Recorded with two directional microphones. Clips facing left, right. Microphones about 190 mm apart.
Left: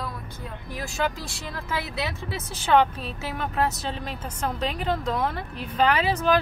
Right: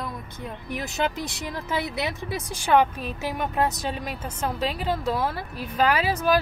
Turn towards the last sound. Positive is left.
turn(degrees=-10)  # may be behind; listen again after turning